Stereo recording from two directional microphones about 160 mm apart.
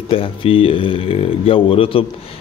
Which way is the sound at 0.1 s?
35° left (ahead or behind).